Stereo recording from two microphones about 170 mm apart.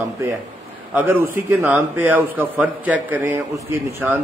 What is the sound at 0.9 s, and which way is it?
A man's voice, 10° right (ahead or behind).